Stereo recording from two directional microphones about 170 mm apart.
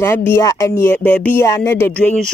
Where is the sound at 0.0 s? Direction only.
15° left (ahead or behind).